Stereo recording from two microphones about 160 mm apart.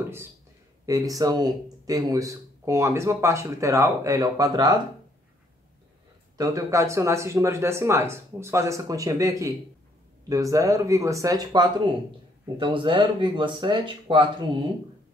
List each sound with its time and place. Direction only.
0.8 s speech: 20° right (ahead or behind)
6.3 s speech: 20° right (ahead or behind)